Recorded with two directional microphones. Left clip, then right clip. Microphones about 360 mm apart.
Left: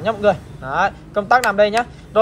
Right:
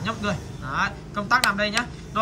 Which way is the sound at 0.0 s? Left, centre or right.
Centre.